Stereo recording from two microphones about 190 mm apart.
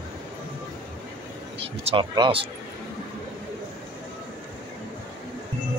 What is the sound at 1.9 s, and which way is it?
Speech, 25° right (ahead or behind).